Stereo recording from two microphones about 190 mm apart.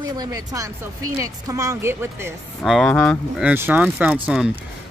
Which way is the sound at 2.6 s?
Centre (ahead or behind).